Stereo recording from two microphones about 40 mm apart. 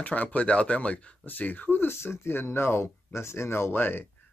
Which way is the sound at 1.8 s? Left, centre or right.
Left.